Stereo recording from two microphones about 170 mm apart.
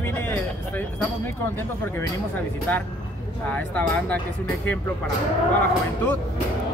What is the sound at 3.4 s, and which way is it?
Speech, 10° left (ahead or behind).